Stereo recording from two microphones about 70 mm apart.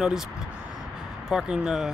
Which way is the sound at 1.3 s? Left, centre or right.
Centre.